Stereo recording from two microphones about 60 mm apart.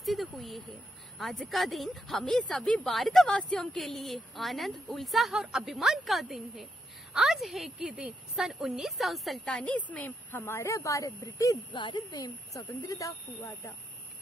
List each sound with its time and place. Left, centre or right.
0.0 s a sound: centre
1.1 s speech: centre
1.5 s speech: centre
9.4 s a woman's voice: centre
10.3 s speech: left